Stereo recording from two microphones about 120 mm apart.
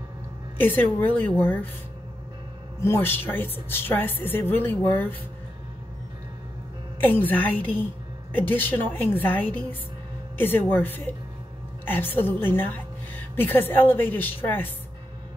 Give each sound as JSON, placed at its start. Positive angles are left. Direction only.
{"t": 0.6, "sound": "a woman's voice", "side_deg": 15}
{"t": 2.8, "sound": "a woman's voice", "side_deg": 20}
{"t": 7.1, "sound": "a woman's voice", "side_deg": 15}